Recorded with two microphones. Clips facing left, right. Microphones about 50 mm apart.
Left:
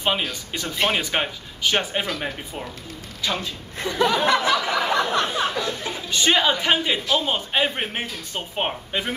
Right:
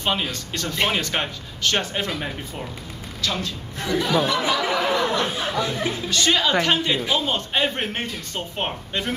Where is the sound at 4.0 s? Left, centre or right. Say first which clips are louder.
Left 2 dB; left.